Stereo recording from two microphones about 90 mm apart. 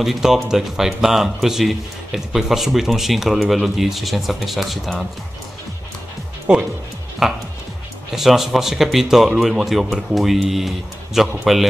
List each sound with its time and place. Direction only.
0.0 s speech: 5° right (ahead or behind)
6.5 s speech: 10° right (ahead or behind)